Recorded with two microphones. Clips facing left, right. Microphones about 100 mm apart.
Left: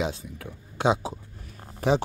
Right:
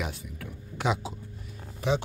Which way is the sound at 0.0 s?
25° left (ahead or behind).